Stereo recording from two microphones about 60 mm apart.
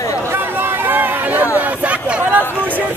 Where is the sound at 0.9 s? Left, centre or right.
Right.